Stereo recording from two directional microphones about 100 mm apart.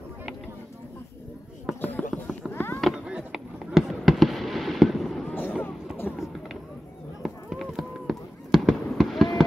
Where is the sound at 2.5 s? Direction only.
20° left (ahead or behind).